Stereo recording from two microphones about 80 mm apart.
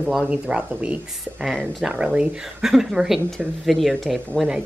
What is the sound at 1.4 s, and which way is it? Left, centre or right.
A woman's voice, centre.